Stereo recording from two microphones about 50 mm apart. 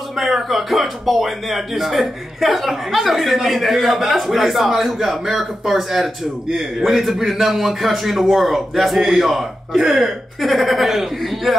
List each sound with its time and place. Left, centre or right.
0.2 s speech: centre